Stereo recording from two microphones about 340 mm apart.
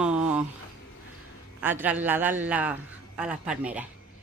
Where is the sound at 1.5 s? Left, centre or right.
Centre.